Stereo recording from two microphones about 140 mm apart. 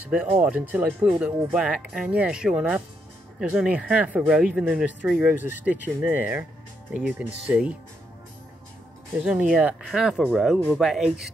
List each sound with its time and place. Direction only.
0.1 s speech: 10° right (ahead or behind)
9.2 s speech: 5° right (ahead or behind)